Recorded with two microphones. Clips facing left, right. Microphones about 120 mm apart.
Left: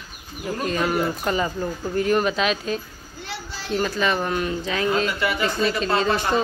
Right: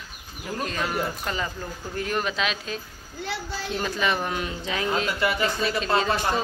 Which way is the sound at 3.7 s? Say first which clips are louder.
Left 4 dB; 15° right (ahead or behind).